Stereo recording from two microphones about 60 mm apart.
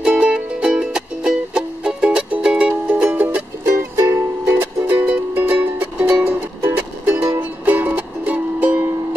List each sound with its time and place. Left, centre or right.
0.0 s music: centre
3.6 s music: right
4.6 s music: right